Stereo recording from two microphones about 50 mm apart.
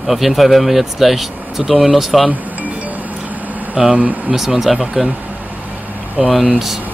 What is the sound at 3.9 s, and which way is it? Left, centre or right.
Speech, right.